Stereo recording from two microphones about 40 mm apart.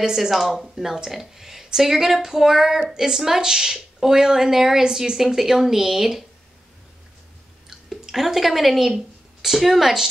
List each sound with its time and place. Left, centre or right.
0.0 s speech: centre
7.9 s speech: centre